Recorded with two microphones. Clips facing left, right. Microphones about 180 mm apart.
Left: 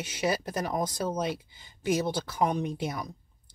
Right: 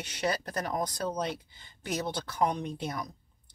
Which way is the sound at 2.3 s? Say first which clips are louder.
Left 1 dB; 10° left (ahead or behind).